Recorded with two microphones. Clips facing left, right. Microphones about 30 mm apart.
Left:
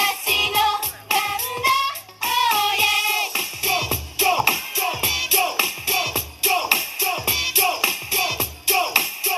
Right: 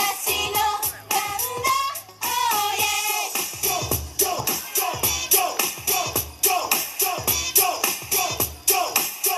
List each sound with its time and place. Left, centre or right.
0.0 s music: left